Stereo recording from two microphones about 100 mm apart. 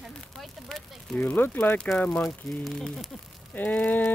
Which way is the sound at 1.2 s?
20° left (ahead or behind).